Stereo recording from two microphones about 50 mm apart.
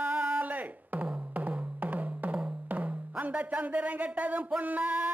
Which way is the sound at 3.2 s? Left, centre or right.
Right.